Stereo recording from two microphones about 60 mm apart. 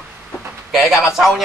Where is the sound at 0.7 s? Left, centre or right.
Centre.